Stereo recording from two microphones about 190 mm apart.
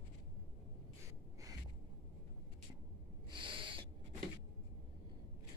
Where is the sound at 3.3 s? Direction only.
25° right (ahead or behind).